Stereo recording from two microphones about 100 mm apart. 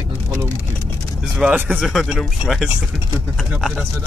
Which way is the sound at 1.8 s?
5° right (ahead or behind).